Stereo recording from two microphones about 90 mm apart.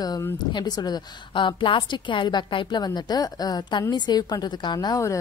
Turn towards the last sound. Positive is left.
turn(degrees=50)  # may be behind; listen again after turning